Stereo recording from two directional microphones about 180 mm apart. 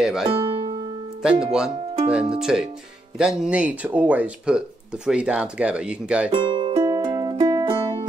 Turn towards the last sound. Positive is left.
turn(degrees=-25)  # may be behind; listen again after turning